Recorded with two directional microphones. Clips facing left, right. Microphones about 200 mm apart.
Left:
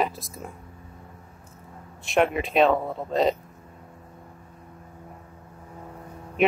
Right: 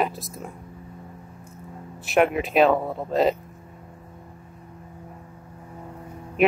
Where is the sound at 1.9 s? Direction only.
5° right (ahead or behind).